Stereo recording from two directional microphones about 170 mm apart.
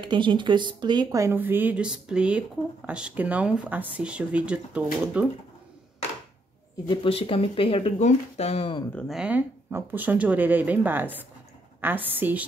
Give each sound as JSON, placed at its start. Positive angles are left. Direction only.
{"t": 0.0, "sound": "speech", "side_deg": -30}
{"t": 6.9, "sound": "speech", "side_deg": 35}
{"t": 8.9, "sound": "speech", "side_deg": 0}